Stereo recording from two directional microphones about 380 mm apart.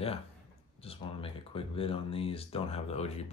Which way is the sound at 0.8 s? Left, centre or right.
Centre.